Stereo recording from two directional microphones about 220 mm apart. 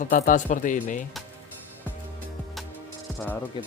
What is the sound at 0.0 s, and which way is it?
Speech, 40° left (ahead or behind).